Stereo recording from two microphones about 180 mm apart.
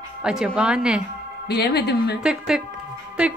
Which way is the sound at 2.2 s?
5° right (ahead or behind).